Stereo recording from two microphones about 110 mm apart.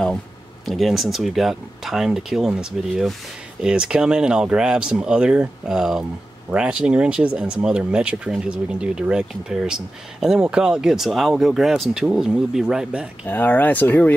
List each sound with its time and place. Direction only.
0.7 s speech: centre (ahead or behind)
13.3 s speech: 15° left (ahead or behind)